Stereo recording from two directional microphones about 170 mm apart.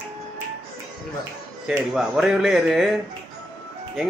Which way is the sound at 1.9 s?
5° right (ahead or behind).